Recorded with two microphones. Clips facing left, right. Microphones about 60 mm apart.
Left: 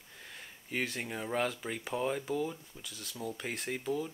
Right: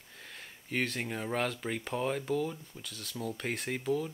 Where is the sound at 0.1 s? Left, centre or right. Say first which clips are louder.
Right 1 dB; centre.